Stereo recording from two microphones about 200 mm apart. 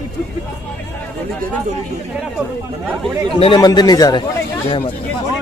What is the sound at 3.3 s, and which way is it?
Speech, 25° left (ahead or behind).